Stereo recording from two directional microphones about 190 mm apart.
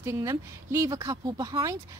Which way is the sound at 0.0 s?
15° right (ahead or behind).